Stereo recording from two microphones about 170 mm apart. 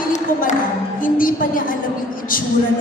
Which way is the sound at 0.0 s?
50° left (ahead or behind).